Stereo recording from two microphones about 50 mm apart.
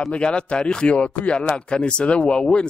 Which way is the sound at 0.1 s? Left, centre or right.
Left.